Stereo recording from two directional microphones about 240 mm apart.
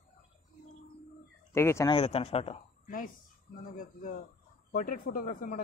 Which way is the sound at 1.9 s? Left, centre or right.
Left.